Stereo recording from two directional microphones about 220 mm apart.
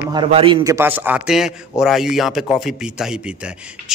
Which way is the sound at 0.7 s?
10° right (ahead or behind).